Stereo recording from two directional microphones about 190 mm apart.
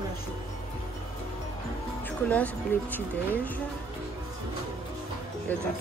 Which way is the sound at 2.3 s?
10° left (ahead or behind).